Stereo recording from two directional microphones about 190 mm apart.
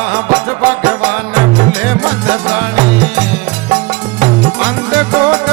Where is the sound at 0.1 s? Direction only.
5° right (ahead or behind).